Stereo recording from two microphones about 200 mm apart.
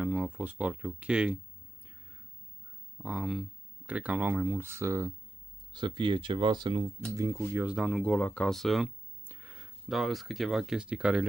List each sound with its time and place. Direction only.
0.0 s speech: 5° right (ahead or behind)
3.0 s speech: 5° right (ahead or behind); by 6.9 s 25° right (ahead or behind)
7.5 s speech: 5° right (ahead or behind)